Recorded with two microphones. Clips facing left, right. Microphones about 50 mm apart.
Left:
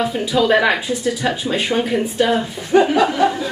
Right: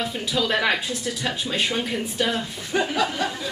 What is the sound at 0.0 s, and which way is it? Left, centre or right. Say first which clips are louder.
Speech: left 8 dB; centre.